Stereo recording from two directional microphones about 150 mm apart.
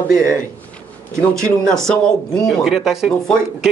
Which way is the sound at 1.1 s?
20° right (ahead or behind).